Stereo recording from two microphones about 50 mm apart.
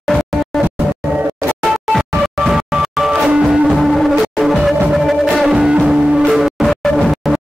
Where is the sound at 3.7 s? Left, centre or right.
Centre.